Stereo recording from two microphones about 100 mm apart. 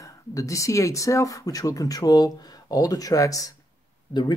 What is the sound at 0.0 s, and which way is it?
Speech, 35° left (ahead or behind).